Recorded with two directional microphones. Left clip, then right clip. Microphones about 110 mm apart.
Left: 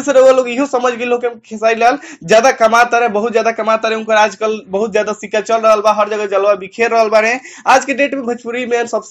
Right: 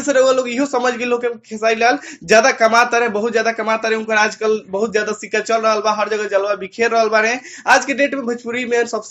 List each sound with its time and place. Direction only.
0.0 s a man's voice: 40° left (ahead or behind)